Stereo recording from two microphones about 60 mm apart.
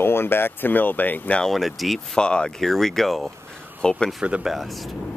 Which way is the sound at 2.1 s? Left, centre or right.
Centre.